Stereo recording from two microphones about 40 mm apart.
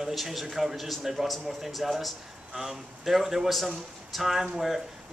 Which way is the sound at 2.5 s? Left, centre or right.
Centre.